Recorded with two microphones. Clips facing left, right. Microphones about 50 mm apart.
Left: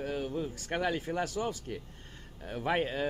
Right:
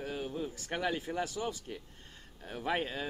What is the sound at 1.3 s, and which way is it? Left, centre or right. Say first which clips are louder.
Speech: left 3 dB; left.